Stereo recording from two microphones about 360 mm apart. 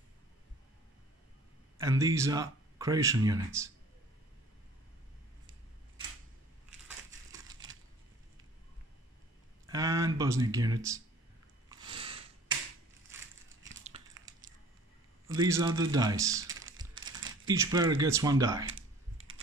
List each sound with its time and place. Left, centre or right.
1.8 s speech: centre
9.7 s speech: centre
11.7 s a sound: centre
13.8 s a sound: centre
15.2 s speech: centre
17.5 s speech: centre
18.7 s typing: right